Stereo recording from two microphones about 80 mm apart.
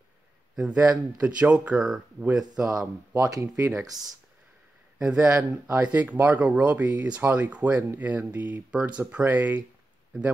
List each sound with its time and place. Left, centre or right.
0.6 s speech: centre
3.2 s speech: right
4.9 s speech: centre